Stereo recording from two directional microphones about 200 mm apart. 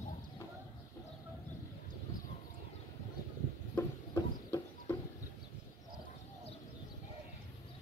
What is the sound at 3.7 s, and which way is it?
Chicken, 15° left (ahead or behind).